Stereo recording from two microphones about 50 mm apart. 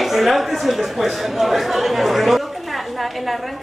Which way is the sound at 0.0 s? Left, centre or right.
Centre.